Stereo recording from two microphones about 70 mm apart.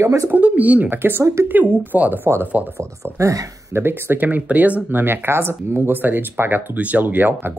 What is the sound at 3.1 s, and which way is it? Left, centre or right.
Speech, right.